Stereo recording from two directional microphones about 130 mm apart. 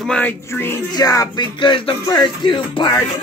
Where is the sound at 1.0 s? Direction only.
30° left (ahead or behind).